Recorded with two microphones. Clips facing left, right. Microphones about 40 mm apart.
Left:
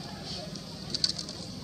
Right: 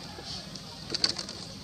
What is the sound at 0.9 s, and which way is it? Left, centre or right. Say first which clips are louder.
Bird: right 2 dB; right.